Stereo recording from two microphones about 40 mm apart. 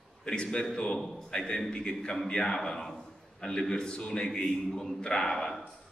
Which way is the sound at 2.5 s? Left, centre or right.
Centre.